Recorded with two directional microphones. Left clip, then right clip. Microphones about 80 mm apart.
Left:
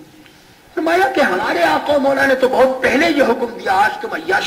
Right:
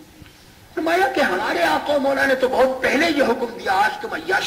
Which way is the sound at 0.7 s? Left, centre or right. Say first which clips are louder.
Left 4 dB; right.